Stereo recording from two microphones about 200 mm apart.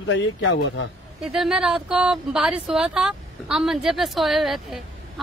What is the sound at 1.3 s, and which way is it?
A woman's voice, 5° right (ahead or behind).